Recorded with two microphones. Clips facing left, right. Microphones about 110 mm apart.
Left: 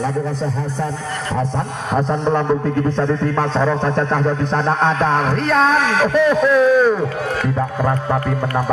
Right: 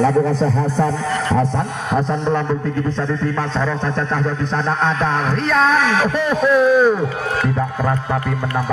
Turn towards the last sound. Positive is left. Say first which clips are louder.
# even
turn(degrees=-10)  # may be behind; listen again after turning